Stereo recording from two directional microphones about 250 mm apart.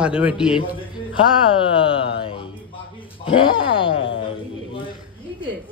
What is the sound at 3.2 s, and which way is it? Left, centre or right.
Speech, left.